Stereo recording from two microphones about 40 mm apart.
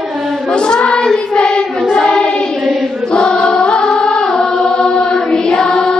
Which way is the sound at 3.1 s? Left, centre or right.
Left.